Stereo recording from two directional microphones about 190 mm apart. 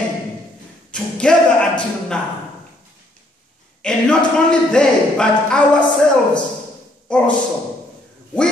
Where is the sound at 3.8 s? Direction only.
5° left (ahead or behind).